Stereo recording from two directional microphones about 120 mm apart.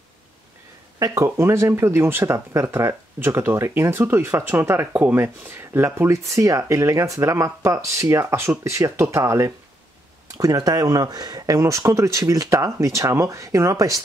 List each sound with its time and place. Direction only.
0.9 s speech: 25° right (ahead or behind)